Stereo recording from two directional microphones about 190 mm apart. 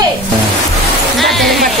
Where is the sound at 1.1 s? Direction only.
Centre (ahead or behind).